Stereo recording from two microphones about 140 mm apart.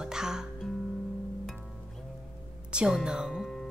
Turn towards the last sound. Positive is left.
turn(degrees=0)  # may be behind; listen again after turning